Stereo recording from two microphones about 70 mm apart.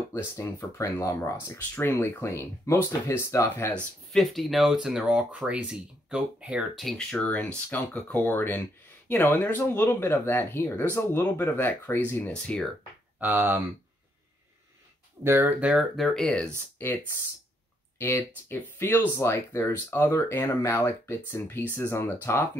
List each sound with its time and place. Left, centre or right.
0.1 s speech: left
1.2 s speech: left
2.3 s speech: left
4.1 s speech: centre
5.0 s speech: centre
6.7 s speech: centre
7.0 s speech: centre; by 12.3 s left
12.3 s speech: centre
13.2 s speech: right
15.2 s speech: right
15.7 s speech: centre
16.1 s speech: centre
16.7 s speech: left